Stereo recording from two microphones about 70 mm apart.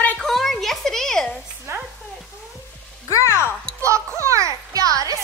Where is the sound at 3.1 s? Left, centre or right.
Left.